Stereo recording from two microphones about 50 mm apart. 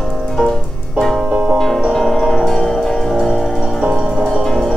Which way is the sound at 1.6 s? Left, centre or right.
Centre.